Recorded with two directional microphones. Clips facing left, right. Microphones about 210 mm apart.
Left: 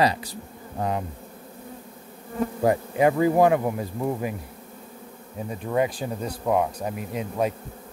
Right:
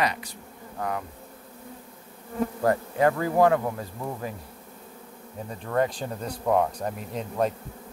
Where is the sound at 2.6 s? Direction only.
15° left (ahead or behind).